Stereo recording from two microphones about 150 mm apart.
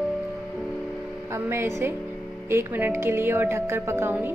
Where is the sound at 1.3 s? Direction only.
15° right (ahead or behind).